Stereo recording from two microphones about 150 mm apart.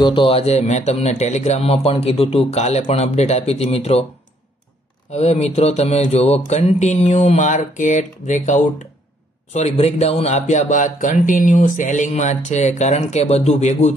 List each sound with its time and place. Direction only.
0.0 s speech: 35° left (ahead or behind)
5.1 s speech: 45° left (ahead or behind)